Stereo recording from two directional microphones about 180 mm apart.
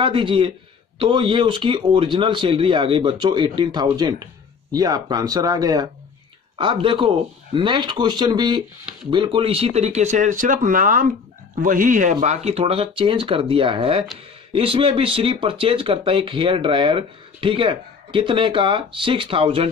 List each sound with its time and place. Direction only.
0.0 s speech: 30° right (ahead or behind)